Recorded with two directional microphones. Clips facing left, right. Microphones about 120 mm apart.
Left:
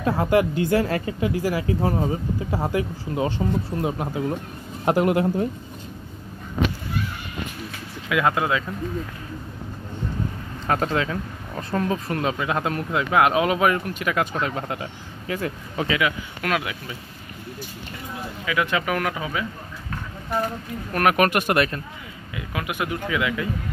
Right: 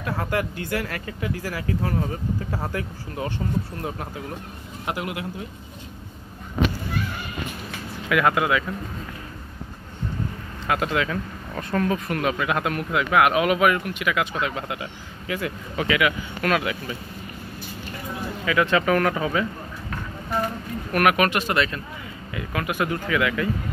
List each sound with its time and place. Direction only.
0.0 s speech: 25° left (ahead or behind)
4.8 s speech: 40° left (ahead or behind)
8.1 s speech: 25° left (ahead or behind)
10.7 s speech: 35° left (ahead or behind)
11.5 s speech: 20° left (ahead or behind)
16.4 s speech: 10° left (ahead or behind)
18.4 s speech: 15° left (ahead or behind)
20.9 s speech: 30° left (ahead or behind)
21.2 s speech: 55° left (ahead or behind)
22.3 s speech: 15° left (ahead or behind)